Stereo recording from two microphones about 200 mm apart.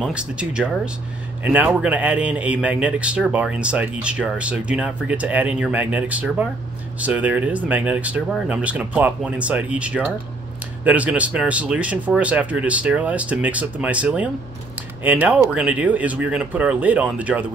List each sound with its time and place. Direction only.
0.0 s speech: 5° right (ahead or behind)